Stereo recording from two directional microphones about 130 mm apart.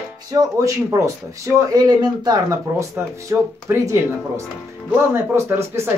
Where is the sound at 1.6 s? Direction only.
30° right (ahead or behind).